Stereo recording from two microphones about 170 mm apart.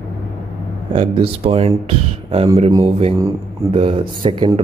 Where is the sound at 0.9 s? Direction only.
35° right (ahead or behind).